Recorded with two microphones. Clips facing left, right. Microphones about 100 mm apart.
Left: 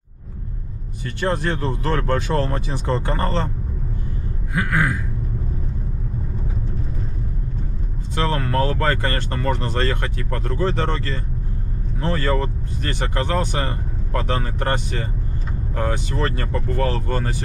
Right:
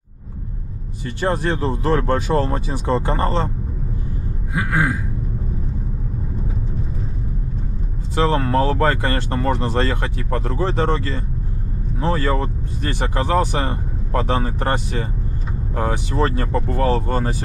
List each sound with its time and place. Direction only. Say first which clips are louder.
1.3 s speech: right 3 dB; 20° right (ahead or behind)
4.6 s speech: right 1 dB; 25° right (ahead or behind)
8.2 s speech: right 4 dB; 25° right (ahead or behind)